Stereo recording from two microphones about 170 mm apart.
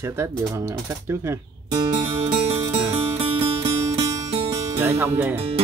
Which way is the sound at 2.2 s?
40° right (ahead or behind).